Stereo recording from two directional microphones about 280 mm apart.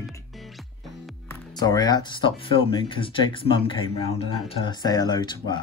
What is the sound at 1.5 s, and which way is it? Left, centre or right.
Speech, centre.